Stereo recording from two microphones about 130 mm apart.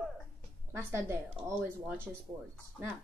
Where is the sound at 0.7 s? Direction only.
20° right (ahead or behind).